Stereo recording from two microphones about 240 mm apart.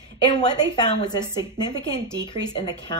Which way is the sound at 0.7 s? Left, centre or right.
Centre.